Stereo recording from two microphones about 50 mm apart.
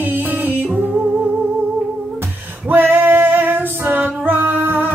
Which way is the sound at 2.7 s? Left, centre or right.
Right.